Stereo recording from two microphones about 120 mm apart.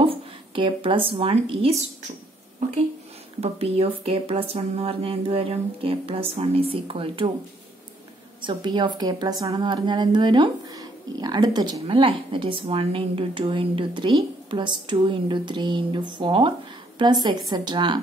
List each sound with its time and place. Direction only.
0.0 s a woman's voice: 45° right (ahead or behind)
3.3 s speech: 55° right (ahead or behind)
8.4 s a woman's voice: 40° right (ahead or behind)